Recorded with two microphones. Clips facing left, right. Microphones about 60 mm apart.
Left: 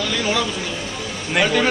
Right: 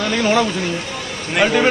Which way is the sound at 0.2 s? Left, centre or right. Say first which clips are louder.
Right 5 dB; right.